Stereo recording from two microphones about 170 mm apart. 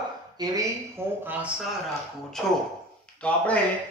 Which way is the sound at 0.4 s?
15° right (ahead or behind).